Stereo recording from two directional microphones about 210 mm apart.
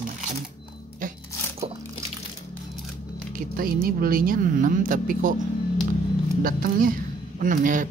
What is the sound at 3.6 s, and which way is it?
Speech, 45° right (ahead or behind).